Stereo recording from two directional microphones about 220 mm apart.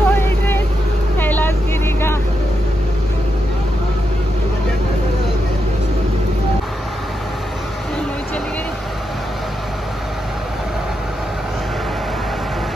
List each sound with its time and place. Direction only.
0.0 s vehicle: 10° left (ahead or behind)